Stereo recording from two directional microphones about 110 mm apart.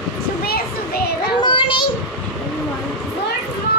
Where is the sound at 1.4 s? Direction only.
50° left (ahead or behind).